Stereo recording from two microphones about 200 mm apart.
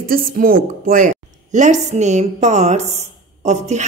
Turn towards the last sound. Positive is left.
turn(degrees=-35)  # may be behind; listen again after turning